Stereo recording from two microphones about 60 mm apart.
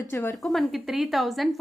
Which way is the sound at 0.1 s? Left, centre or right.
Left.